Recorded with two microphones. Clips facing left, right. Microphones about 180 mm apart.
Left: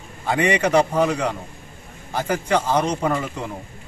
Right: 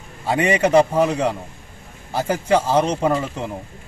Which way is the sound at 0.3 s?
30° right (ahead or behind).